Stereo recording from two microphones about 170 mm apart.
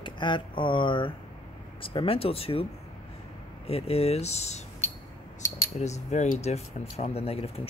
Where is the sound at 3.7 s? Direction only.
35° left (ahead or behind).